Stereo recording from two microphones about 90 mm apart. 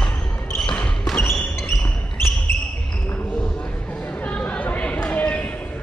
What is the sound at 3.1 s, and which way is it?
Chatter, 20° left (ahead or behind).